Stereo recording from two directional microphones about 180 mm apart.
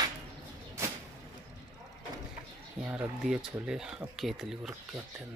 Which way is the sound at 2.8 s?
5° right (ahead or behind).